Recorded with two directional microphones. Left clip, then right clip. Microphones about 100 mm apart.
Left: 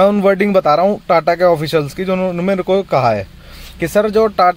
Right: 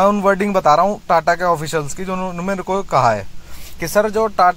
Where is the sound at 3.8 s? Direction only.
50° left (ahead or behind).